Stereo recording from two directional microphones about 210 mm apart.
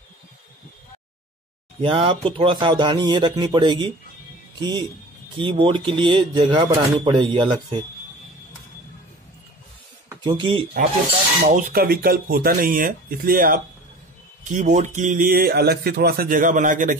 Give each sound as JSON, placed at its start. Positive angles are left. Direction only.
{"t": 1.8, "sound": "speech", "side_deg": -25}
{"t": 10.2, "sound": "speech", "side_deg": -25}
{"t": 11.4, "sound": "speech", "side_deg": -40}